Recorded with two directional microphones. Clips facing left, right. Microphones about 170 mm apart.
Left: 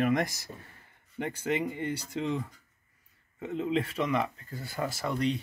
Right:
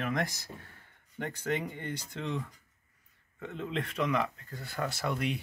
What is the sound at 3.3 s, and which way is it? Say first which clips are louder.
Speech: left 6 dB; 15° left (ahead or behind).